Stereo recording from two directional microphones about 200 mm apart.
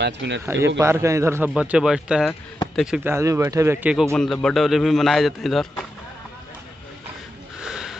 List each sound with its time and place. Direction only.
0.0 s speech: 60° right (ahead or behind)
0.7 s a man's voice: 15° right (ahead or behind)
4.0 s a man's voice: 5° left (ahead or behind)
7.6 s sniff: 5° right (ahead or behind)